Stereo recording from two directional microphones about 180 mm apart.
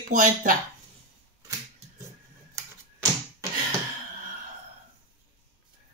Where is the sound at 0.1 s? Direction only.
45° right (ahead or behind).